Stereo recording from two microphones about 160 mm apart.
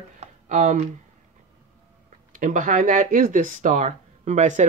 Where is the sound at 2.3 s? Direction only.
55° right (ahead or behind).